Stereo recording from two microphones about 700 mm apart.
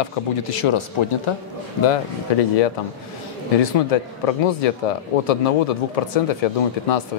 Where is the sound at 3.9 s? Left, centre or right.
Left.